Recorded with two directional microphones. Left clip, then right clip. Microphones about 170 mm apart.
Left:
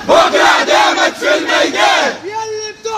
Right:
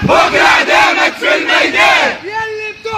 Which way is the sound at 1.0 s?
15° right (ahead or behind).